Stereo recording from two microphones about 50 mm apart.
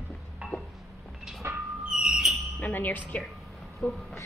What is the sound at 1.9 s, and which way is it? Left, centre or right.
Music, centre.